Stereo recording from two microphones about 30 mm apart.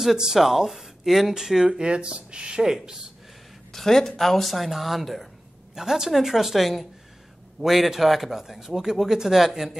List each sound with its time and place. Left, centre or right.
0.3 s speech: centre
1.7 s speech: right
2.6 s speech: centre
3.7 s speech: centre
5.8 s speech: centre